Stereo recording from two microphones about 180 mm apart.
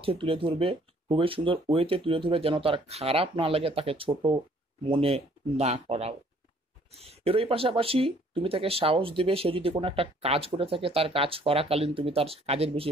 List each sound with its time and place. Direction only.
0.0 s speech: 30° right (ahead or behind)